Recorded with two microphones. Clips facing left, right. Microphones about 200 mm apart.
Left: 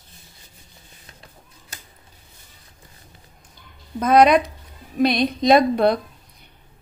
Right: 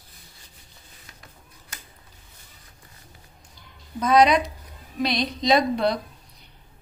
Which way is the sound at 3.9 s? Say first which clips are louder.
Left 4 dB; 55° left (ahead or behind).